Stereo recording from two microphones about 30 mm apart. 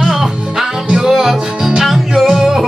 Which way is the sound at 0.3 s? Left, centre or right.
Centre.